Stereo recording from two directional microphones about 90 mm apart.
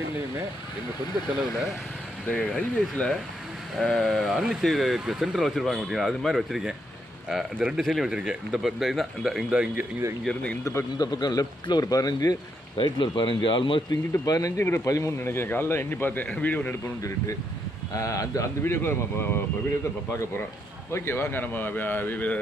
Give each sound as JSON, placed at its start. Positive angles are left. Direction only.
{"t": 2.2, "sound": "speech", "side_deg": 15}
{"t": 10.2, "sound": "speech", "side_deg": 15}
{"t": 10.6, "sound": "speech", "side_deg": 30}
{"t": 11.0, "sound": "speech", "side_deg": 50}
{"t": 12.7, "sound": "speech", "side_deg": 65}
{"t": 14.1, "sound": "speech", "side_deg": 40}
{"t": 17.9, "sound": "speech", "side_deg": 40}
{"t": 20.9, "sound": "speech", "side_deg": 30}